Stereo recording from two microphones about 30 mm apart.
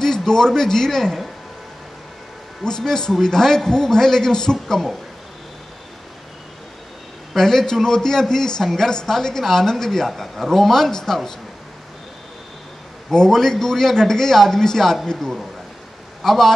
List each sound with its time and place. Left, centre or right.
0.0 s speech: centre
2.6 s a man's voice: left
7.3 s a man's voice: centre
9.8 s a man's voice: centre
13.3 s a man's voice: centre
16.2 s a man's voice: centre